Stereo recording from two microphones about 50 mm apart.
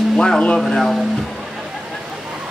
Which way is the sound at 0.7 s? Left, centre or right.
Centre.